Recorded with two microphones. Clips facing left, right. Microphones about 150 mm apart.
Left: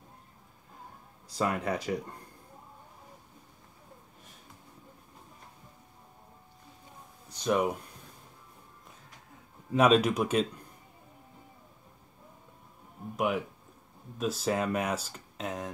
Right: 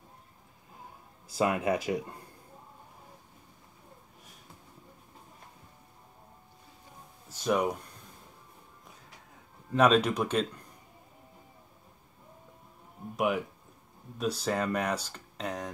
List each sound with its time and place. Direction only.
1.4 s speech: 5° right (ahead or behind)
7.2 s speech: 5° right (ahead or behind)
9.7 s speech: 5° left (ahead or behind)
13.1 s speech: centre (ahead or behind)